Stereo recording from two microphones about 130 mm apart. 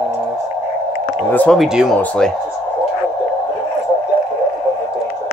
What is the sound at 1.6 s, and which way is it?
Speech, centre (ahead or behind).